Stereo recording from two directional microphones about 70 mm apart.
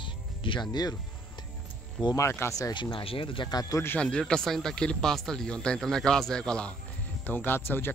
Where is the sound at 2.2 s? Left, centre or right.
Left.